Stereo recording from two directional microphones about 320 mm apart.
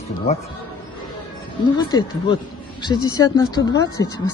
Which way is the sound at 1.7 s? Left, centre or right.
Centre.